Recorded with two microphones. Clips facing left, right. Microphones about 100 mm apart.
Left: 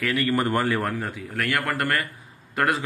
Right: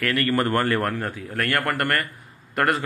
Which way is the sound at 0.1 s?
15° left (ahead or behind).